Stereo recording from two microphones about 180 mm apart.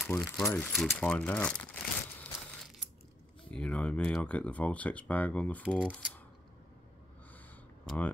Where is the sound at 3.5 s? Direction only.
5° left (ahead or behind).